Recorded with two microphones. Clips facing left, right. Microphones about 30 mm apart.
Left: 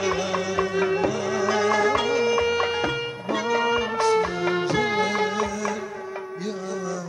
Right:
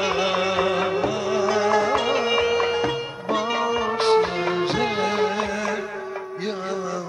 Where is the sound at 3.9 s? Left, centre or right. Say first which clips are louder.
Right 5 dB; right.